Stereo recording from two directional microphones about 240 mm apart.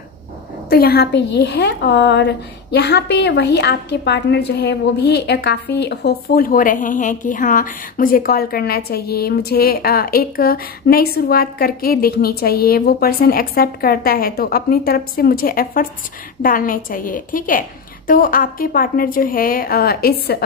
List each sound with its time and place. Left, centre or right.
0.7 s a woman's voice: left